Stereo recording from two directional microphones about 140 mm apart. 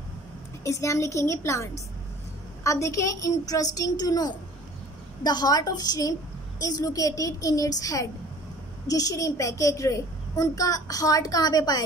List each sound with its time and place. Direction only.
0.7 s a child's voice: 20° left (ahead or behind)